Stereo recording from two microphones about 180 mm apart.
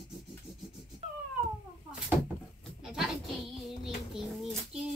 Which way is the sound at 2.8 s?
Centre (ahead or behind).